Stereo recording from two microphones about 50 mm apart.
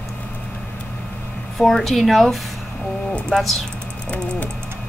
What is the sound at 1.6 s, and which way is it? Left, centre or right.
Speech, centre.